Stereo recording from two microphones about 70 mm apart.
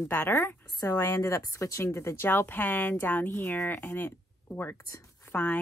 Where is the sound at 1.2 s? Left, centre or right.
Left.